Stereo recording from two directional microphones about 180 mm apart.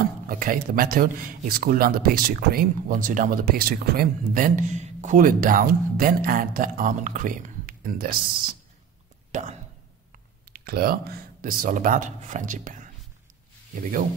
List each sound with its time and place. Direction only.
0.3 s speech: 50° right (ahead or behind)
9.3 s speech: 40° right (ahead or behind)
10.1 s speech: 55° right (ahead or behind)